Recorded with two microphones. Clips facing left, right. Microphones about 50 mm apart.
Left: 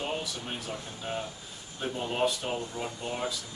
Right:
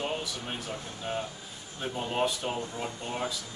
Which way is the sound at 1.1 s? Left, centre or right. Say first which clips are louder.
Right 1 dB; centre.